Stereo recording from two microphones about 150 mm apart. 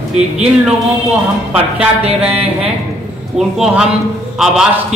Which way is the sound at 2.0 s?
40° right (ahead or behind).